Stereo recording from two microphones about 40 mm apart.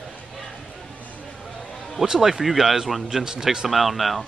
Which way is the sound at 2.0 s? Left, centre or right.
Centre.